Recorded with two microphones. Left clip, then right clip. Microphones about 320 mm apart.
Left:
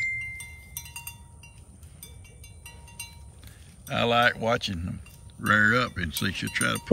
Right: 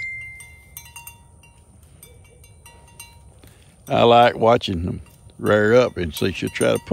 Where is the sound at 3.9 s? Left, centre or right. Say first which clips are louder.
Right 9 dB; centre.